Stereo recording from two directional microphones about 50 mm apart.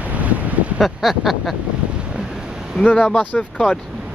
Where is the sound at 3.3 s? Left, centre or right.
Centre.